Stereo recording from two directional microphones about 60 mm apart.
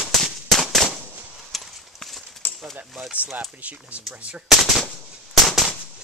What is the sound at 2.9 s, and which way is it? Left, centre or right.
Speech, centre.